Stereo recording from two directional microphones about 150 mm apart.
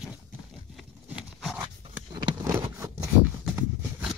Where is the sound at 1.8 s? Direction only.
30° right (ahead or behind).